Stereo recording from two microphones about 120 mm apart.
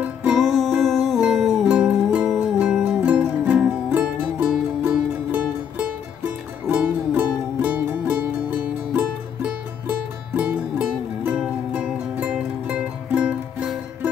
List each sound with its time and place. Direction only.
0.3 s music: centre (ahead or behind)